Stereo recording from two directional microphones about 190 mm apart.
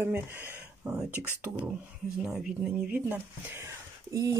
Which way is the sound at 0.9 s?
10° right (ahead or behind).